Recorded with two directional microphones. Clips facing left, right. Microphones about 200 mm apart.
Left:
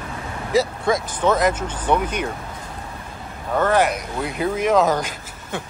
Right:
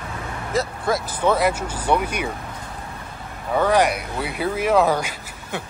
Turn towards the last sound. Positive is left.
turn(degrees=-10)  # may be behind; listen again after turning